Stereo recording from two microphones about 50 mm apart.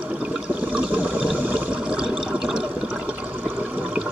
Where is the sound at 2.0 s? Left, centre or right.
Centre.